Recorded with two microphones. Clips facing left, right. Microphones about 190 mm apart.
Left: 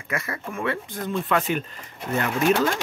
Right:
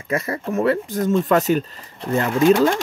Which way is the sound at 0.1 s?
35° right (ahead or behind).